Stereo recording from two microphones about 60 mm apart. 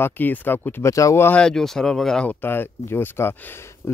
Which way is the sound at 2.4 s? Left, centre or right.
Left.